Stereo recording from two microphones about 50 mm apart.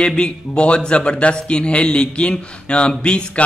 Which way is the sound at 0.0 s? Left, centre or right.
Centre.